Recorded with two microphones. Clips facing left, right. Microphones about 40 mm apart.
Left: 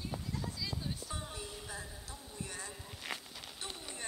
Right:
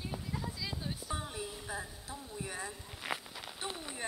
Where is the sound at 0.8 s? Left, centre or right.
Centre.